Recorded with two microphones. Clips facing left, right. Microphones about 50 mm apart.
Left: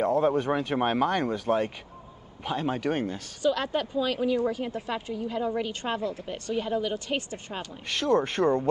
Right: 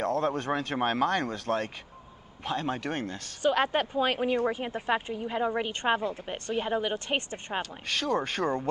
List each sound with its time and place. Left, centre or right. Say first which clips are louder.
0.0 s speech: left 4 dB; centre
3.4 s speech: right 1 dB; right
7.9 s speech: left 4 dB; centre